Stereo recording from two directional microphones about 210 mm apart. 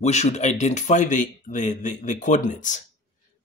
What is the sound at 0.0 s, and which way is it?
Speech, 30° left (ahead or behind).